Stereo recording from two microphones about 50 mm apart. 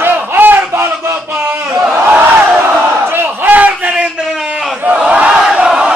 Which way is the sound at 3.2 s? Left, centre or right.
Right.